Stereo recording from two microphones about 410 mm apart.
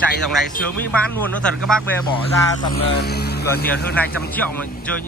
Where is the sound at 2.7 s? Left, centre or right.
Left.